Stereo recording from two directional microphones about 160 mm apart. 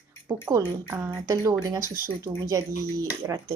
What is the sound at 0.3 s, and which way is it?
A woman's voice, 15° right (ahead or behind).